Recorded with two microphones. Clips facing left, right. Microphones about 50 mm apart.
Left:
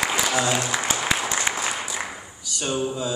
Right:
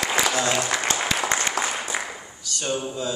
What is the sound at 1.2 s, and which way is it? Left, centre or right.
Applause, right.